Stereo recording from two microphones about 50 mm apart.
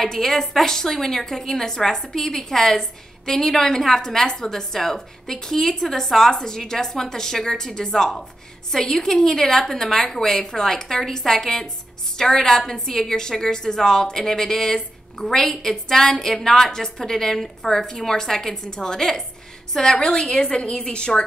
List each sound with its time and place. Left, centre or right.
0.0 s a woman's voice: centre